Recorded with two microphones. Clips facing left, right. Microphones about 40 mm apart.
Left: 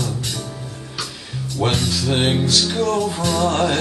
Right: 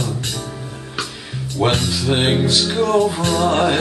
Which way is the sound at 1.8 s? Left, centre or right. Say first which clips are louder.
Right 1 dB; centre.